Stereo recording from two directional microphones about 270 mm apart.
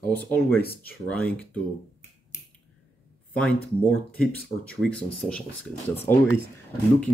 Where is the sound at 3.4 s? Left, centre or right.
Centre.